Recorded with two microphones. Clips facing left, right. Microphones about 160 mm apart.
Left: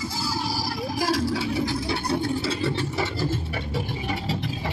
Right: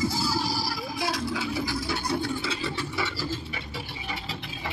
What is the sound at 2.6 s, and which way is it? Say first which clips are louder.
Vehicle: left 5 dB; 50° left (ahead or behind).